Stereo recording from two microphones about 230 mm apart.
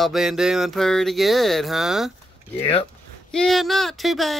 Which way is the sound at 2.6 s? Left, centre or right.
Left.